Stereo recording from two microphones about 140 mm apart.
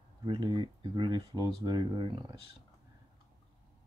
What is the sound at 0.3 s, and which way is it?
Speech, 35° right (ahead or behind).